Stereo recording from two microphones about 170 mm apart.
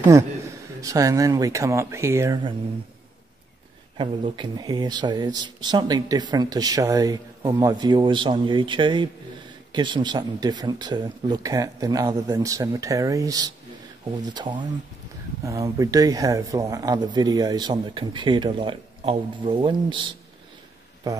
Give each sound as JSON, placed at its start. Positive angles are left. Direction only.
{"t": 0.1, "sound": "speech", "side_deg": -20}
{"t": 4.0, "sound": "speech", "side_deg": -30}